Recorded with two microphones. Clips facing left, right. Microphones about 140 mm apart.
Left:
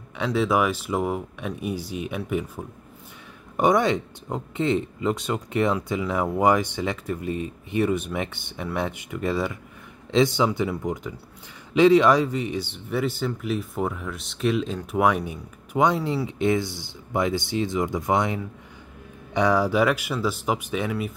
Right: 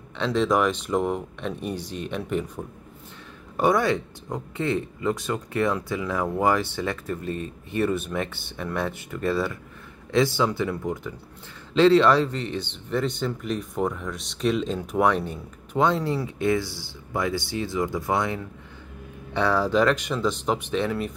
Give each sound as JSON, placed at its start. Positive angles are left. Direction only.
{"t": 0.2, "sound": "speech", "side_deg": 10}
{"t": 3.5, "sound": "speech", "side_deg": 20}